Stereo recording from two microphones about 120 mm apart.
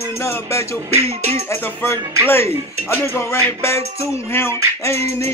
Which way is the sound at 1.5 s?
20° left (ahead or behind).